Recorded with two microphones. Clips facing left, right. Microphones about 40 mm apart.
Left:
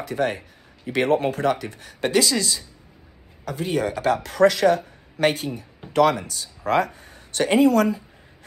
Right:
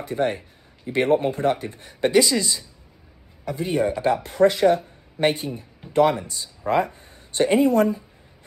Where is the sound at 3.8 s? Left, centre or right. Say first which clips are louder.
Right 3 dB; left.